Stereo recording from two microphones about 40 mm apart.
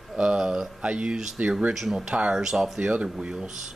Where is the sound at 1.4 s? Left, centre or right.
Right.